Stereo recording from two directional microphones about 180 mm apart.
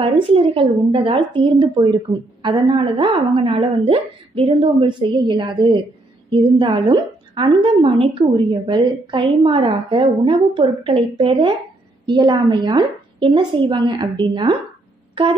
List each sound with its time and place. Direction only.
0.0 s speech: 30° right (ahead or behind)